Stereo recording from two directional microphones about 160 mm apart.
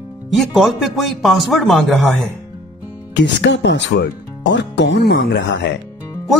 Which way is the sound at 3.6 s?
90° left.